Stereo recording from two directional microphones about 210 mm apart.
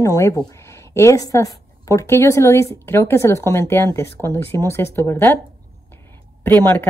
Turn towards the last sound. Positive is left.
turn(degrees=10)  # may be behind; listen again after turning